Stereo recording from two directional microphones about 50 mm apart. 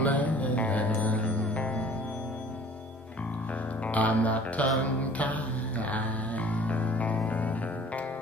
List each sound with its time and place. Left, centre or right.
0.0 s music: left
3.8 s music: left